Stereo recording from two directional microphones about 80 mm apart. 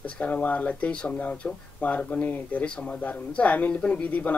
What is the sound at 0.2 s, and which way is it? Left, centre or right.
Speech, centre.